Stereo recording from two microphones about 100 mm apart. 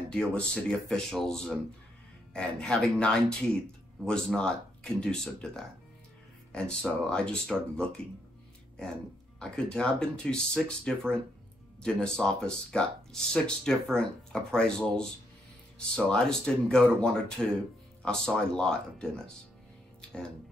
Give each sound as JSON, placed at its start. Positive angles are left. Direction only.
{"t": 0.1, "sound": "speech", "side_deg": 5}
{"t": 9.4, "sound": "speech", "side_deg": 5}
{"t": 20.0, "sound": "music", "side_deg": 5}